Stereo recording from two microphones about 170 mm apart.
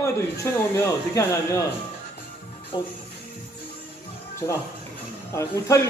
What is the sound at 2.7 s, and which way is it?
Speech, 25° left (ahead or behind).